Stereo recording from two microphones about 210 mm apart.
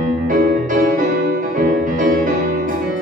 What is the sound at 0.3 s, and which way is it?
Music, 40° right (ahead or behind).